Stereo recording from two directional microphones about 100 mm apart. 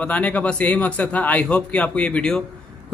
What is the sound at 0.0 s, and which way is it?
A man's voice, 15° left (ahead or behind).